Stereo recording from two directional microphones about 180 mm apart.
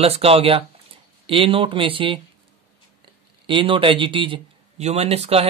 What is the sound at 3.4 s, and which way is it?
Speech, 30° right (ahead or behind).